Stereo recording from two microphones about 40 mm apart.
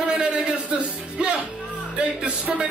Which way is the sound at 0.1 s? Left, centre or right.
Right.